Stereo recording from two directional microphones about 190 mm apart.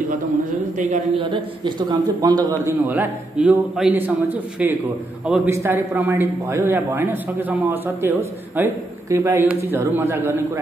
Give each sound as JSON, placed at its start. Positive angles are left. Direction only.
{"t": 0.7, "sound": "a man's voice", "side_deg": -40}
{"t": 1.1, "sound": "a man's voice", "side_deg": -25}
{"t": 2.9, "sound": "a man's voice", "side_deg": -10}